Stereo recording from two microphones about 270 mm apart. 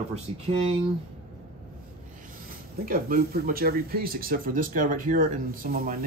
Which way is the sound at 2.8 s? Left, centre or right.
Right.